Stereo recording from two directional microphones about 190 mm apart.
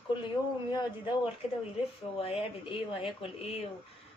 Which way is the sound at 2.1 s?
30° left (ahead or behind).